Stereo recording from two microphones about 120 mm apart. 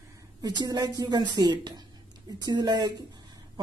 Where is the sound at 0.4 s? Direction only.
30° right (ahead or behind).